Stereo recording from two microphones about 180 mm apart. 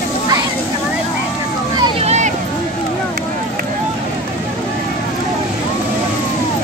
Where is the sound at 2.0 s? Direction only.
40° right (ahead or behind).